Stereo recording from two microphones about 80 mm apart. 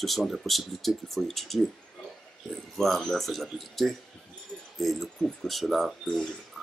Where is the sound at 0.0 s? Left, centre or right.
Centre.